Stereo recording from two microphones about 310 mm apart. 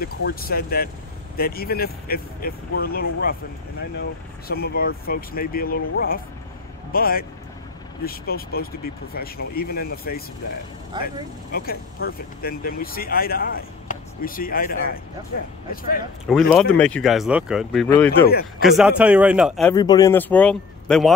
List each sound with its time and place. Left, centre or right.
0.0 s speech: left
4.5 s speech: left
10.9 s speech: centre
11.5 s speech: left
16.3 s speech: centre
19.7 s speech: centre